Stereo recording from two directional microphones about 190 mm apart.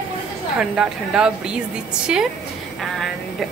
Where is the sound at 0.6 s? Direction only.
5° right (ahead or behind).